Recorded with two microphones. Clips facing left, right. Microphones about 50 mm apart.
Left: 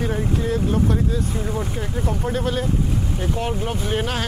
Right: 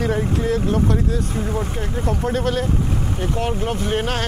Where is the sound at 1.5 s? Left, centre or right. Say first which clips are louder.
Right 2 dB; centre.